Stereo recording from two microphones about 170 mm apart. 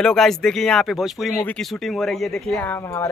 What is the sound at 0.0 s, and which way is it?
Speech, 5° left (ahead or behind).